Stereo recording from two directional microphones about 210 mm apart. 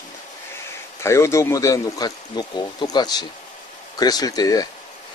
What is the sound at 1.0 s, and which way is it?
Speech, 15° left (ahead or behind).